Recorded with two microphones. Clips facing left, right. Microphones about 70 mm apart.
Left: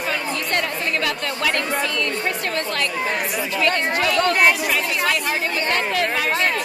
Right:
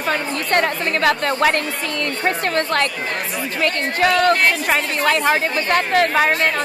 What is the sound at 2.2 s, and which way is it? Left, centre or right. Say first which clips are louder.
A woman's voice: right 5 dB; right.